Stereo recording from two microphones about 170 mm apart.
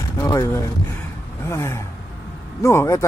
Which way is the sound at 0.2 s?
20° left (ahead or behind).